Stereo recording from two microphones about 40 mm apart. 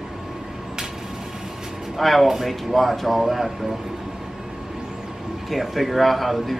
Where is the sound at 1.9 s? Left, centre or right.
Centre.